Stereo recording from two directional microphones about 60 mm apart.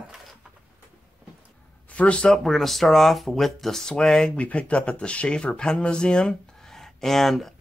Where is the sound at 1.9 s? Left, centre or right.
Left.